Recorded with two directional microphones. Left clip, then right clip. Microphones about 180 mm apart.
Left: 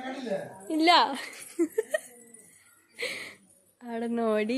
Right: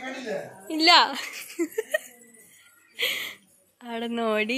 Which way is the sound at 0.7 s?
15° left (ahead or behind).